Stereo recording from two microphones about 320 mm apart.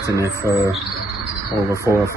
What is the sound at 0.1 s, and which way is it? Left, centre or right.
Speech, centre.